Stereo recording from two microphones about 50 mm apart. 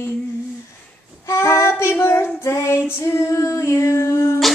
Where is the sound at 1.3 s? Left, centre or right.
Left.